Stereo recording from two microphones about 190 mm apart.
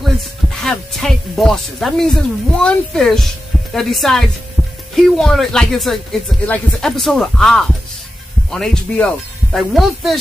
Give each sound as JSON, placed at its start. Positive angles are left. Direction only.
{"t": 0.6, "sound": "speech", "side_deg": 0}